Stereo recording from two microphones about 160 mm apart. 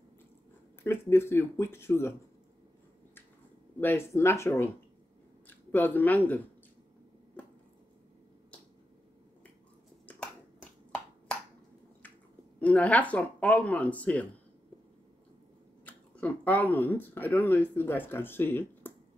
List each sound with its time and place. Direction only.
0.8 s speech: 15° left (ahead or behind)
3.8 s speech: 15° left (ahead or behind)
10.0 s finger snapping: 5° left (ahead or behind)
12.5 s speech: 10° left (ahead or behind)
16.2 s speech: 10° left (ahead or behind)